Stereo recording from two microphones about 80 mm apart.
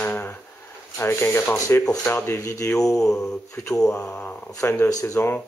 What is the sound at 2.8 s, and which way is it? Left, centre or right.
Mantra, centre.